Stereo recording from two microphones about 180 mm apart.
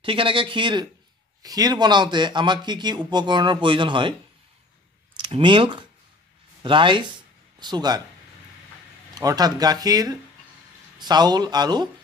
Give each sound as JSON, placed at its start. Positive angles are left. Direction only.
{"t": 0.0, "sound": "a man's voice", "side_deg": -30}
{"t": 5.2, "sound": "a man's voice", "side_deg": -25}
{"t": 9.1, "sound": "a man's voice", "side_deg": -20}